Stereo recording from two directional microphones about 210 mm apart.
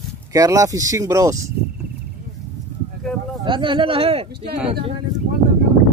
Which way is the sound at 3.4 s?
25° right (ahead or behind).